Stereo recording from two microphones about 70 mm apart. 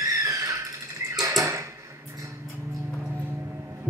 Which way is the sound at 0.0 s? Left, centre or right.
Right.